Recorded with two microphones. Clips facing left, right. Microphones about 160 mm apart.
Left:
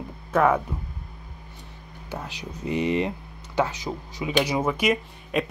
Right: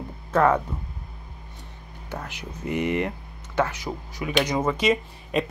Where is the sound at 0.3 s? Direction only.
5° left (ahead or behind).